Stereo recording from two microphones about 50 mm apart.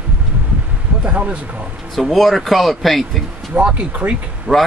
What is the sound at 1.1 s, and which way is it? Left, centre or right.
Speech, right.